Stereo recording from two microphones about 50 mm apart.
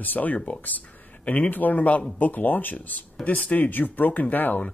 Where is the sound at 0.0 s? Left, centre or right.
Left.